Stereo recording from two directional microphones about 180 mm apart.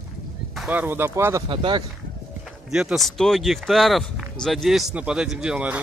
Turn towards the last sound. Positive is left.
turn(degrees=-5)  # may be behind; listen again after turning